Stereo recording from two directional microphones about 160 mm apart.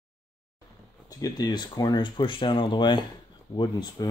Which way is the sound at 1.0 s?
25° left (ahead or behind).